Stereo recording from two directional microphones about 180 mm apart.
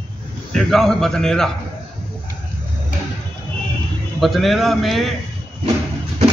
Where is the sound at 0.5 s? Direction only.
Centre (ahead or behind).